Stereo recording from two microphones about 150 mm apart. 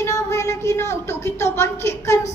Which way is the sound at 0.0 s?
20° left (ahead or behind).